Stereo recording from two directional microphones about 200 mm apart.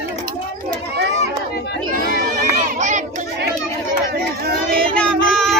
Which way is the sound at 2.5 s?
35° right (ahead or behind).